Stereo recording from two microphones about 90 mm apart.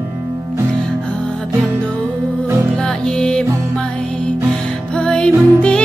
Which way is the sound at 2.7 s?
10° left (ahead or behind).